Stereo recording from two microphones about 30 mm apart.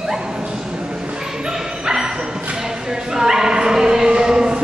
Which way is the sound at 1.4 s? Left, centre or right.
Right.